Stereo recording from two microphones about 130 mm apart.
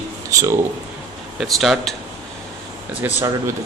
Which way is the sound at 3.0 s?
15° right (ahead or behind).